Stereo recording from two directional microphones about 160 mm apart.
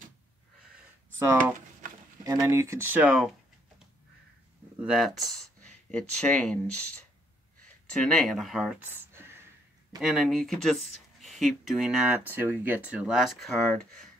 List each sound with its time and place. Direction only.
1.2 s speech: 15° right (ahead or behind)
4.7 s speech: 5° right (ahead or behind)
7.9 s speech: 5° left (ahead or behind)
8.8 s a sound: 15° right (ahead or behind)
9.9 s speech: 5° right (ahead or behind)